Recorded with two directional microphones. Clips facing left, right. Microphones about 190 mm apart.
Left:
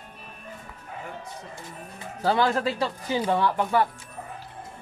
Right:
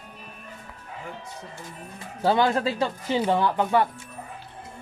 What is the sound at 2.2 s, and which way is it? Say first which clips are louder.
Speech: right 2 dB; 20° right (ahead or behind).